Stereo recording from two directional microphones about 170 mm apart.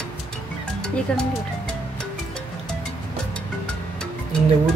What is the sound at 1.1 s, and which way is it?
Speech, 5° left (ahead or behind).